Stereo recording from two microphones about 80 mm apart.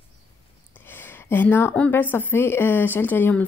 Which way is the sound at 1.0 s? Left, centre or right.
Left.